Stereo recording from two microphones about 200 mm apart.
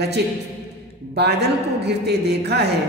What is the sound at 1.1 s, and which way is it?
A man's voice, 55° right (ahead or behind).